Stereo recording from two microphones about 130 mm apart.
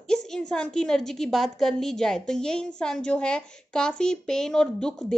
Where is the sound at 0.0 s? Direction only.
5° left (ahead or behind).